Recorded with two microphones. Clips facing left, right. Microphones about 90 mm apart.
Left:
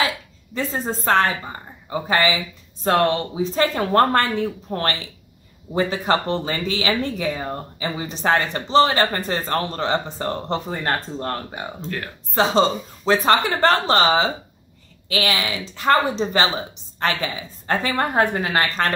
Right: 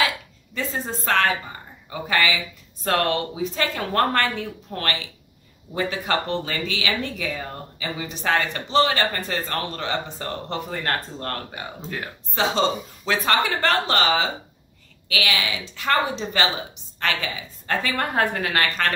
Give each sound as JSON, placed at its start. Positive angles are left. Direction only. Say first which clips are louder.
{"t": 0.6, "sound": "speech", "louder": "left 3 dB", "side_deg": 35}
{"t": 12.4, "sound": "a woman's voice", "louder": "left 4 dB", "side_deg": 35}